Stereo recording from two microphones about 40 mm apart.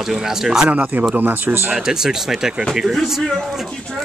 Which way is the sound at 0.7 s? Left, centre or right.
Right.